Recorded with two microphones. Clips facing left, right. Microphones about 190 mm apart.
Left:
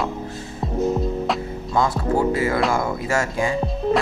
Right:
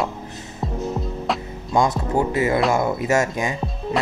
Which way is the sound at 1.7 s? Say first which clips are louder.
Right 1 dB; 20° right (ahead or behind).